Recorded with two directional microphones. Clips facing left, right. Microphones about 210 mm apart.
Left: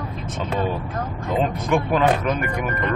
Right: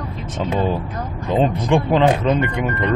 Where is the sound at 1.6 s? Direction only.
25° right (ahead or behind).